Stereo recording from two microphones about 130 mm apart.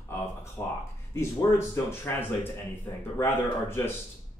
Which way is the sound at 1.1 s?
20° left (ahead or behind).